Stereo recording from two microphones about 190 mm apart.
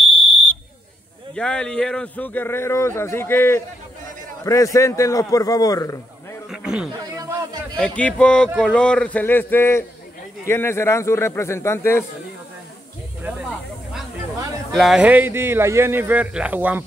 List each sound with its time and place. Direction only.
1.3 s speech: 5° left (ahead or behind)
6.5 s a sound: 5° right (ahead or behind)
7.0 s snake: 20° right (ahead or behind)
7.7 s speech: 5° left (ahead or behind)
14.7 s a man's voice: centre (ahead or behind)